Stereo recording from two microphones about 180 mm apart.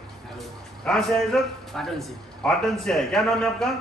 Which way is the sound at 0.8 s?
5° left (ahead or behind).